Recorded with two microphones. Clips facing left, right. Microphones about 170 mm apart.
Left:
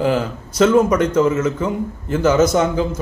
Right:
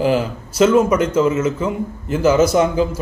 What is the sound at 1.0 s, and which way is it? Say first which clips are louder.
Speech: even; 30° right (ahead or behind).